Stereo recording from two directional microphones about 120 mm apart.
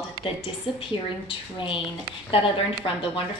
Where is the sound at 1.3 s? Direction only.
45° left (ahead or behind).